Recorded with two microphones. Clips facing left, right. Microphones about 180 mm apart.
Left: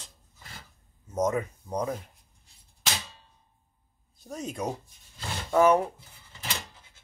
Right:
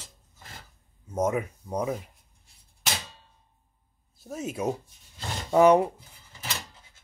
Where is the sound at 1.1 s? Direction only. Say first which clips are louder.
Right 1 dB; 10° right (ahead or behind).